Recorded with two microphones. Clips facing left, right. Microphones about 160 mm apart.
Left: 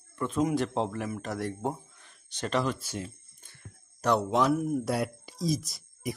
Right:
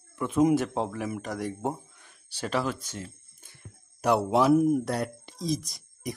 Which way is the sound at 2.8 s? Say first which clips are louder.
Left 3 dB; 10° left (ahead or behind).